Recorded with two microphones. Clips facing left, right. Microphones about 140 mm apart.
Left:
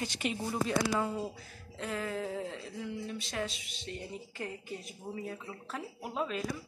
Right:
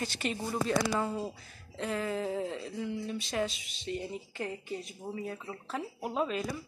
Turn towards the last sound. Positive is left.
turn(degrees=0)  # may be behind; listen again after turning